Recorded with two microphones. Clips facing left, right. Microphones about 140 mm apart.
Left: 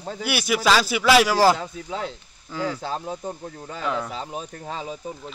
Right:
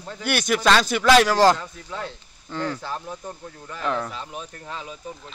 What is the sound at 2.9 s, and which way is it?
Speech, 25° left (ahead or behind).